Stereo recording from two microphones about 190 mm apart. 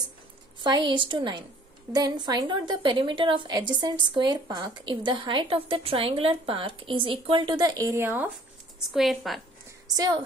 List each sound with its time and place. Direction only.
0.6 s a woman's voice: 25° right (ahead or behind)
8.9 s a woman's voice: centre (ahead or behind)